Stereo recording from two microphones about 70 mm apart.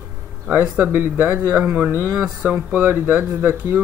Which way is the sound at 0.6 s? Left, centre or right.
Right.